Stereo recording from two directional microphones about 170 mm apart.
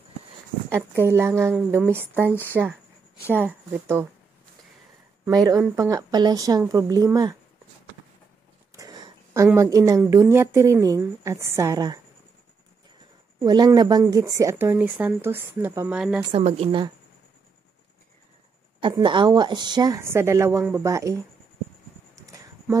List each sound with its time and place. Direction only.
0.7 s speech: 15° right (ahead or behind)
5.3 s a woman's voice: 20° right (ahead or behind)
8.7 s a sound: 25° right (ahead or behind)
9.6 s a woman's voice: 20° right (ahead or behind)
13.4 s speech: 20° right (ahead or behind)
16.3 s speech: 35° right (ahead or behind)
18.8 s a woman's voice: 30° right (ahead or behind)
22.2 s a sound: 20° right (ahead or behind)